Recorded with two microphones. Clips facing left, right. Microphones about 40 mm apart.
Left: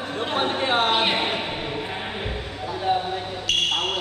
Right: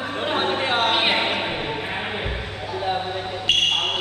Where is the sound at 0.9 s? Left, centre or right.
Right.